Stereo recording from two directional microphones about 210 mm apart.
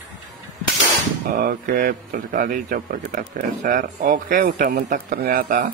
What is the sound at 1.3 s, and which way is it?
Speech, 40° right (ahead or behind).